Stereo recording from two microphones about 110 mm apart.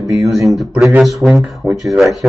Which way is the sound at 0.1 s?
Centre (ahead or behind).